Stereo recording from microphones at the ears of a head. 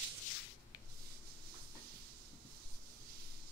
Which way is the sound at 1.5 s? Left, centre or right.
Right.